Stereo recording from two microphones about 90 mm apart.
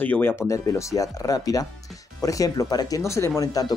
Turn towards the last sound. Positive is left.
turn(degrees=45)  # may be behind; listen again after turning